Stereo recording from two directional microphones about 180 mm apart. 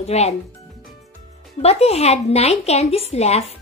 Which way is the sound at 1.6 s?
35° left (ahead or behind).